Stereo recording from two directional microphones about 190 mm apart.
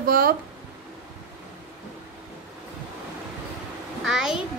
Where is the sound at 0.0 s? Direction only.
50° right (ahead or behind).